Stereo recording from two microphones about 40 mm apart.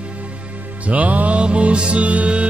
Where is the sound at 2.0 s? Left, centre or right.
Right.